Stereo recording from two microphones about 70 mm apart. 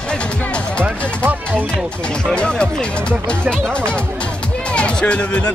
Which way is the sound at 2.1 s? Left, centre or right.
Centre.